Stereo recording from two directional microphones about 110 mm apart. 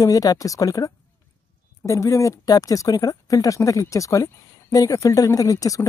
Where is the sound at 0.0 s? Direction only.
35° left (ahead or behind).